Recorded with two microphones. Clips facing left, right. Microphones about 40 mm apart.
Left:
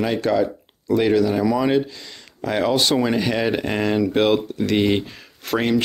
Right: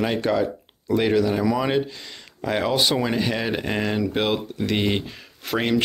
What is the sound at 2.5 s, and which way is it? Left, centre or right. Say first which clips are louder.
Speech: left 2 dB; centre.